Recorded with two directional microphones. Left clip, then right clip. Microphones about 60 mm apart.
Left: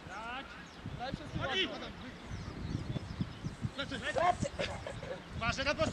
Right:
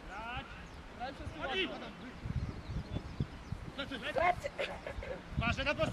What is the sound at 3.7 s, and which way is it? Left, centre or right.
Speech, centre.